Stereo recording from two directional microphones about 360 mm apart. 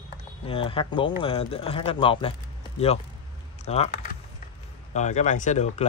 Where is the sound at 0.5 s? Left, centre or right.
Centre.